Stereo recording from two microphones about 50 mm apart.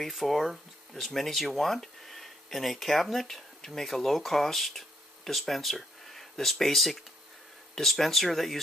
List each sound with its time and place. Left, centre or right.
0.0 s speech: centre